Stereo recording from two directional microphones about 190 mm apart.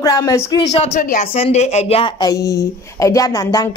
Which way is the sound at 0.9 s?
45° left (ahead or behind).